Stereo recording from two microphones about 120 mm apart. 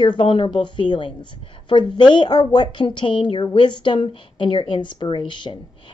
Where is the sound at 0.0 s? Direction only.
40° left (ahead or behind).